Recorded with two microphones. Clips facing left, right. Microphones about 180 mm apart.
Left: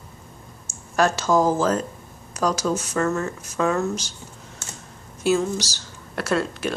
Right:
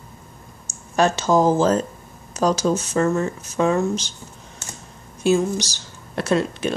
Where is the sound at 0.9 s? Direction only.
20° right (ahead or behind).